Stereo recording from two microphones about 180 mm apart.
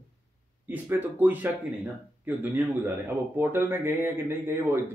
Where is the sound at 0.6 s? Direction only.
10° right (ahead or behind).